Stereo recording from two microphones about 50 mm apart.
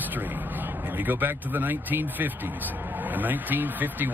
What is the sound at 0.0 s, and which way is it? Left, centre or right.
Speech, right.